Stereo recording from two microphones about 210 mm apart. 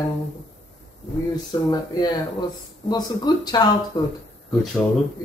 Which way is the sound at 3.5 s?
20° left (ahead or behind).